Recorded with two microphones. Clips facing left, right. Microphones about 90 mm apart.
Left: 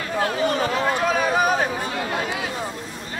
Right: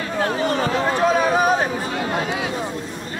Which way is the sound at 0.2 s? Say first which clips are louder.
Right 1 dB; 35° right (ahead or behind).